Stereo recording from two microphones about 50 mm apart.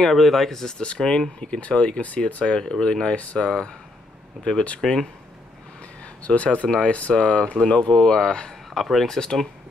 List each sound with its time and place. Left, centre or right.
0.0 s speech: centre
4.8 s speech: centre
6.2 s speech: left
8.7 s speech: centre